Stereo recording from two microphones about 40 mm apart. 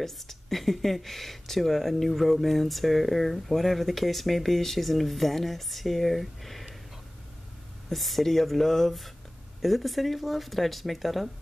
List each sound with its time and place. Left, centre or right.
0.0 s speech: centre
7.9 s speech: centre